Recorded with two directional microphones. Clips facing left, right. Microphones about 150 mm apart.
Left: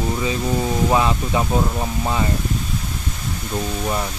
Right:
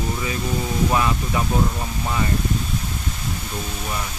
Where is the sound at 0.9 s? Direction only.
25° left (ahead or behind).